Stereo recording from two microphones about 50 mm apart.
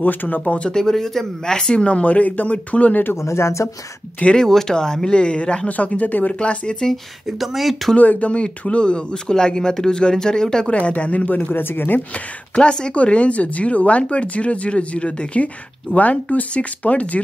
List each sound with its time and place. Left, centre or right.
0.0 s speech: left
0.6 s speech: centre
3.2 s speech: left
4.4 s speech: centre
7.2 s speech: centre
8.0 s speech: left; by 10.7 s centre
10.7 s speech: left
12.5 s speech: centre